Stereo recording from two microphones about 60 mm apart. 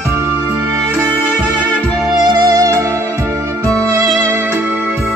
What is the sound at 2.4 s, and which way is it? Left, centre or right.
Music, right.